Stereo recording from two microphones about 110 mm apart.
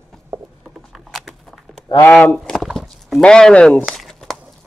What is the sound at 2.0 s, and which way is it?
Speech, 15° left (ahead or behind).